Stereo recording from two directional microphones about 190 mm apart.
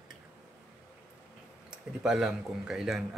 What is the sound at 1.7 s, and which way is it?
Speech, 5° right (ahead or behind).